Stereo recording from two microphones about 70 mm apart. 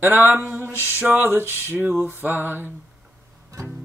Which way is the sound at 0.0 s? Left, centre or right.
Right.